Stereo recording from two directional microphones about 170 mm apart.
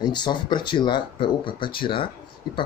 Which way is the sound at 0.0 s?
25° left (ahead or behind).